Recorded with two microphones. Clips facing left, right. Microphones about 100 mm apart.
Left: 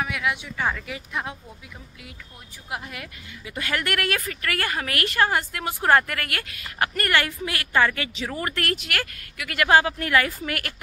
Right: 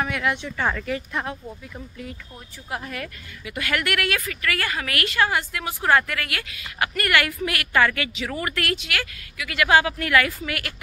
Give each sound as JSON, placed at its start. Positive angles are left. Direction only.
{"t": 0.0, "sound": "speech", "side_deg": 5}
{"t": 2.7, "sound": "speech", "side_deg": 15}
{"t": 3.4, "sound": "a woman's voice", "side_deg": 30}